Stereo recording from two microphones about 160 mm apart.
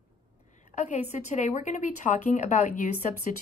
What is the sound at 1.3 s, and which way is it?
Speech, 50° left (ahead or behind).